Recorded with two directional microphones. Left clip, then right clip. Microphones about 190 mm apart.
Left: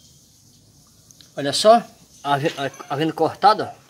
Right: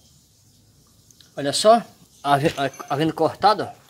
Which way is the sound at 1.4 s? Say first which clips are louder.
Left 2 dB; 5° right (ahead or behind).